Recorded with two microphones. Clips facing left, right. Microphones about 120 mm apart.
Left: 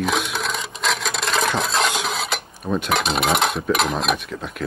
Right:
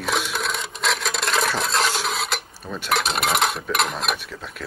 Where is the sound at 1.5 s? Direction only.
Centre (ahead or behind).